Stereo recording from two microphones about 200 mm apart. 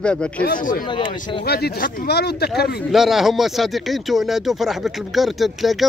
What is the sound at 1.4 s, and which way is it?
Speech, 55° left (ahead or behind).